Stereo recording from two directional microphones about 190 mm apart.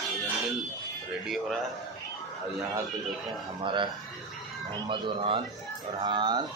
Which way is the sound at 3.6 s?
25° right (ahead or behind).